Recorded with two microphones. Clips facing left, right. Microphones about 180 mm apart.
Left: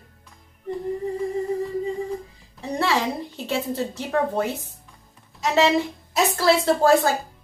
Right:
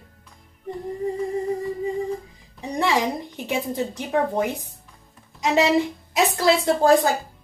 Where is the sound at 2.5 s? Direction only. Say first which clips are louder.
Right 1 dB; 15° right (ahead or behind).